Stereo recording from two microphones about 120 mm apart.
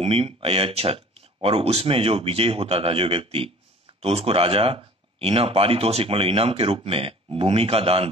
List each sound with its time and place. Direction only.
0.0 s speech: 55° right (ahead or behind)